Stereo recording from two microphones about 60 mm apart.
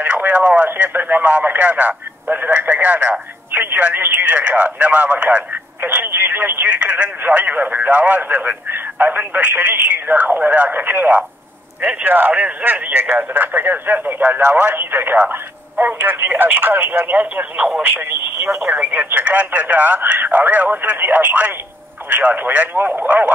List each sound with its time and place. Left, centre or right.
0.0 s radio: right
0.7 s speech: right
18.7 s speech: right